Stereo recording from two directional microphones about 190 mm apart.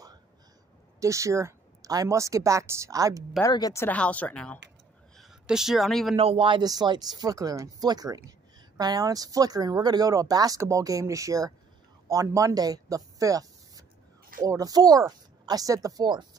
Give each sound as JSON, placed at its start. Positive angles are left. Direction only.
{"t": 0.9, "sound": "a woman's voice", "side_deg": -15}
{"t": 3.4, "sound": "speech", "side_deg": 20}
{"t": 6.1, "sound": "speech", "side_deg": -30}